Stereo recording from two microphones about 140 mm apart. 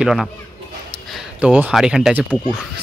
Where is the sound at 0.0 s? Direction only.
Centre (ahead or behind).